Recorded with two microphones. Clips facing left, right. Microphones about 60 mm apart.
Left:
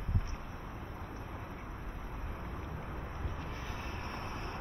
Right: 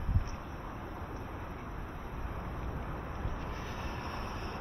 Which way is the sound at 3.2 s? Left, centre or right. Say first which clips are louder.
Right 2 dB; right.